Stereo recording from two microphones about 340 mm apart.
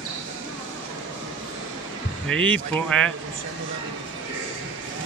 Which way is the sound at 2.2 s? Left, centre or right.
Centre.